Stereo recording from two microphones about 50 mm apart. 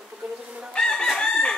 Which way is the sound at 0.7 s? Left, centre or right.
Centre.